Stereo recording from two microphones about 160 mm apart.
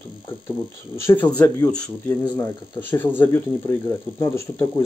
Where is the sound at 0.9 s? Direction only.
15° left (ahead or behind).